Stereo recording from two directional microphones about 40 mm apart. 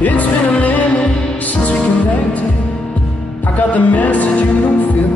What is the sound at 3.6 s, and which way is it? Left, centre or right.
Music, left.